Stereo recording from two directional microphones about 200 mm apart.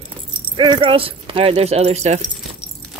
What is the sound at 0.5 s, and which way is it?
Speech, 25° right (ahead or behind).